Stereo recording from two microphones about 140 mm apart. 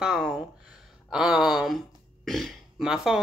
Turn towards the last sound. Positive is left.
turn(degrees=-5)  # may be behind; listen again after turning